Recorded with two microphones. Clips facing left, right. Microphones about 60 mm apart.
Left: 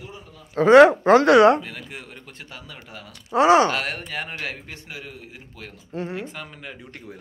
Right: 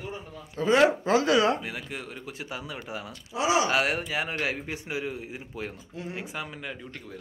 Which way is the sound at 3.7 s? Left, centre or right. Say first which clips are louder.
Right 1 dB; centre.